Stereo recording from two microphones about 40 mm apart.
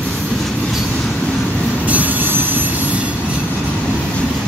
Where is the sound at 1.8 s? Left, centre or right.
Right.